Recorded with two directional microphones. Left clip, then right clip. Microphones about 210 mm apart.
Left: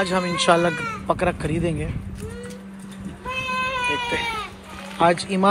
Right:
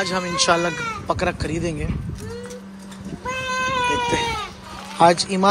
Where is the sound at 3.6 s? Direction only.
45° right (ahead or behind).